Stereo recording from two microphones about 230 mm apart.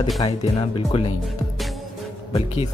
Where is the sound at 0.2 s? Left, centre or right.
Left.